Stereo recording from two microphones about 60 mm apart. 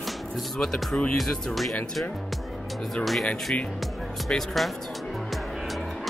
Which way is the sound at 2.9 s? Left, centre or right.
Centre.